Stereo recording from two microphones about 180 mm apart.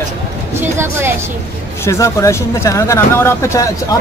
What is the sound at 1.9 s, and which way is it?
Speech, 15° left (ahead or behind).